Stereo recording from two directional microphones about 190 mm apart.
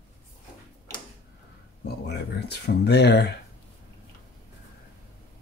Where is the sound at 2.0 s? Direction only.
60° left (ahead or behind).